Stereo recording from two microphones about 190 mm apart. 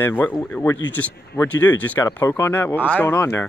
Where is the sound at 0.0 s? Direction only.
10° left (ahead or behind).